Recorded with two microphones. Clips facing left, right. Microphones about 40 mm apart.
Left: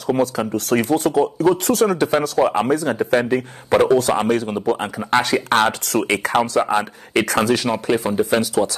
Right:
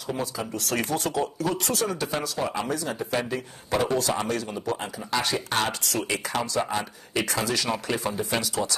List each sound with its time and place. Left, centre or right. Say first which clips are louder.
0.0 s speech: left 11 dB; left
0.7 s speech: left 9 dB; left
1.6 s speech: left 10 dB; left